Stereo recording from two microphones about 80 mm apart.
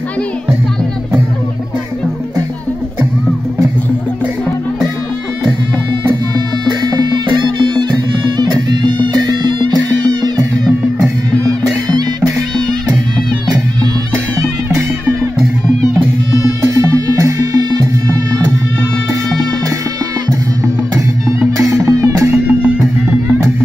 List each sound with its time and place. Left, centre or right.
6.3 s music: right
8.4 s music: right
16.6 s music: right
21.3 s music: right
22.3 s music: centre